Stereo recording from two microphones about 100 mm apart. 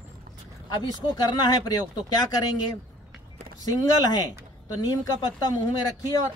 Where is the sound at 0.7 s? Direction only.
45° left (ahead or behind).